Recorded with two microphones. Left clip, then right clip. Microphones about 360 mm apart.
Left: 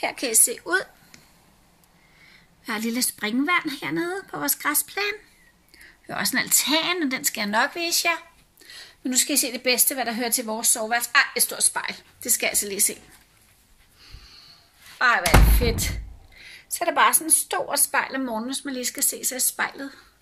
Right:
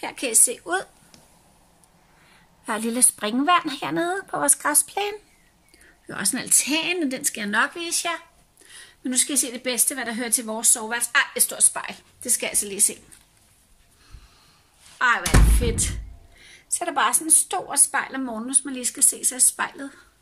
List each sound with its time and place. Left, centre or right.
0.0 s speech: centre
2.6 s a woman's voice: right
3.4 s speech: centre
4.2 s a woman's voice: right
6.0 s speech: centre
15.0 s speech: centre